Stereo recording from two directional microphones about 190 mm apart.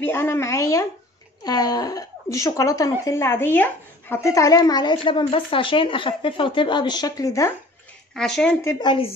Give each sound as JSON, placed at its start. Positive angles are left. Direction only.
{"t": 0.0, "sound": "speech", "side_deg": 10}
{"t": 8.1, "sound": "a woman's voice", "side_deg": 5}
{"t": 8.6, "sound": "speech", "side_deg": 25}